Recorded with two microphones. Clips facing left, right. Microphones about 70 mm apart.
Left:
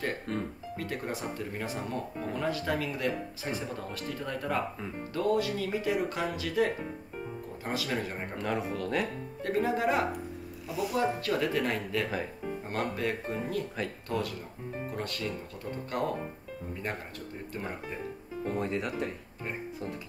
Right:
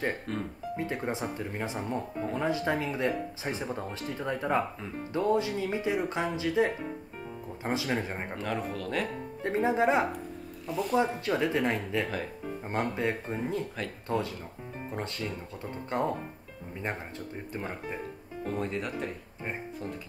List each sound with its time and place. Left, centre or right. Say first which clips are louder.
0.3 s speech: even; centre
0.7 s speech: right 3 dB; right
8.4 s speech: left 3 dB; centre
9.4 s speech: right 2 dB; right
10.7 s speech: right 3 dB; centre
11.1 s speech: right 1 dB; centre
18.4 s speech: left 1 dB; centre